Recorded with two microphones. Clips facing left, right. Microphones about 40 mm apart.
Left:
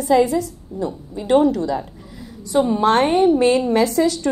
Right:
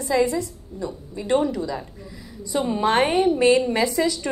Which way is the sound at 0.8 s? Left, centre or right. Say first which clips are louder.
Left 5 dB; centre.